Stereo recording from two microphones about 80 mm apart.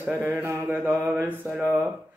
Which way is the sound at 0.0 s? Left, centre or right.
Right.